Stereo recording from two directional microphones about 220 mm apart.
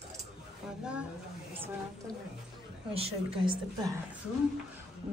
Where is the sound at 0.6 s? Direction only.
Centre (ahead or behind).